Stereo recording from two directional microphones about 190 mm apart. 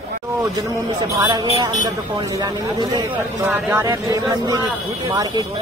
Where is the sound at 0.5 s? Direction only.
20° right (ahead or behind).